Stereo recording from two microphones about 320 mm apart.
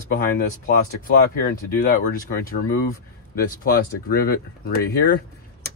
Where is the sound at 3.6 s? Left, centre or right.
Left.